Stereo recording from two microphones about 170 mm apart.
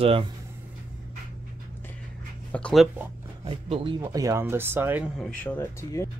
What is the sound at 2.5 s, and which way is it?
Speech, 5° left (ahead or behind).